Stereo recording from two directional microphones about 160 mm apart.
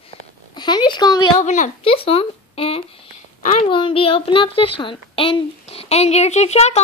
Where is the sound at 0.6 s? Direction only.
25° left (ahead or behind).